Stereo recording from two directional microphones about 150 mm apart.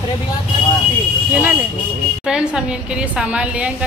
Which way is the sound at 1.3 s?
10° right (ahead or behind).